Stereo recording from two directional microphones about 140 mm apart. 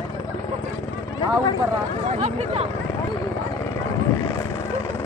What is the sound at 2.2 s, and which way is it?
Speech, 45° right (ahead or behind).